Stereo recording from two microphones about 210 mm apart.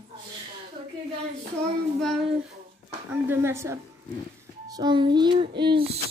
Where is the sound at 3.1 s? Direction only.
10° right (ahead or behind).